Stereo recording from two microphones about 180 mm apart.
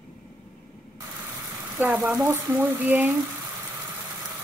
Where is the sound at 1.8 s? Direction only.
10° right (ahead or behind).